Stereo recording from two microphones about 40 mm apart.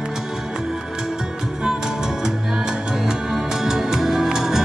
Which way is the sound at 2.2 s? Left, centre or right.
Centre.